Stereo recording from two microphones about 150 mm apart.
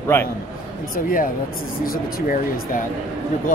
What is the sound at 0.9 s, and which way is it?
Speech, 70° left (ahead or behind).